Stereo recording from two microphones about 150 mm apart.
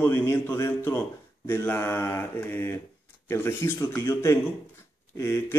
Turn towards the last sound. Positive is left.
turn(degrees=20)  # may be behind; listen again after turning